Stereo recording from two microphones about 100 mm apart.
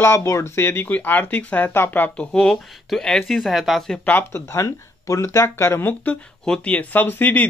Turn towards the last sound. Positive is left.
turn(degrees=15)  # may be behind; listen again after turning